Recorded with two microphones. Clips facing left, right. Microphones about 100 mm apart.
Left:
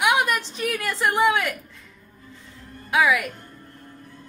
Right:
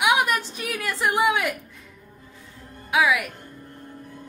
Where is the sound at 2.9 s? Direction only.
10° right (ahead or behind).